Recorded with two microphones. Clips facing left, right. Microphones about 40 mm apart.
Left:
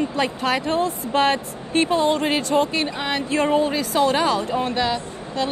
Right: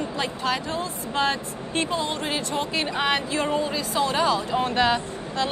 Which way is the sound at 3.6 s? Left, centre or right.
Left.